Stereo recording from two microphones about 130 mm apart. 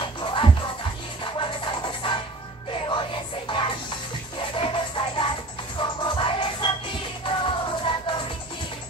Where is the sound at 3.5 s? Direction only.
40° left (ahead or behind).